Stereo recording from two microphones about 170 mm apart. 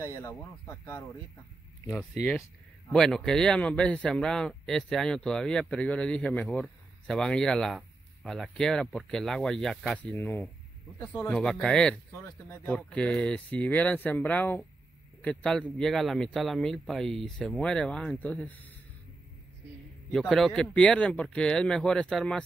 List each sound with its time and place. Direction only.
0.0 s speech: 15° left (ahead or behind)
2.9 s speech: 5° left (ahead or behind)
20.1 s speech: 5° left (ahead or behind)